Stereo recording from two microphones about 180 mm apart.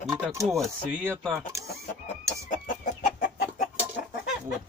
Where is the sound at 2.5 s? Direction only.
50° left (ahead or behind).